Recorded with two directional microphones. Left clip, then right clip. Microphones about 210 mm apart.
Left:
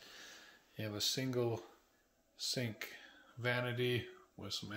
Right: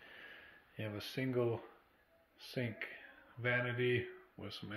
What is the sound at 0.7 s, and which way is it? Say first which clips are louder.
Speech: left 5 dB; 15° left (ahead or behind).